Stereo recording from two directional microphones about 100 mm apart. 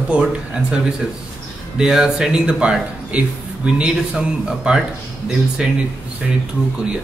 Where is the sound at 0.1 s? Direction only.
10° right (ahead or behind).